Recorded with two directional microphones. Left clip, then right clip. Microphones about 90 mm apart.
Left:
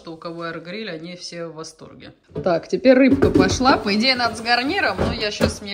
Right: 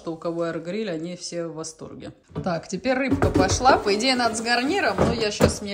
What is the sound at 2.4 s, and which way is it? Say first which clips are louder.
Speech: left 10 dB; 25° right (ahead or behind).